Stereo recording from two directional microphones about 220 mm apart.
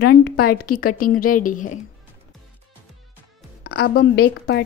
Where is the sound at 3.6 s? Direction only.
45° left (ahead or behind).